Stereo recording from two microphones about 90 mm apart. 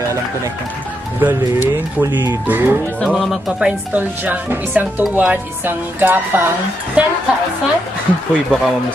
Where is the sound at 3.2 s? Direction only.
Centre (ahead or behind).